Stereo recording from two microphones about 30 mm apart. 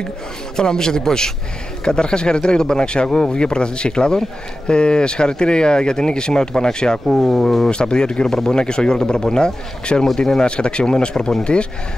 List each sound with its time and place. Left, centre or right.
0.6 s speech: left
7.2 s speech: centre
7.7 s speech: left
10.4 s speech: left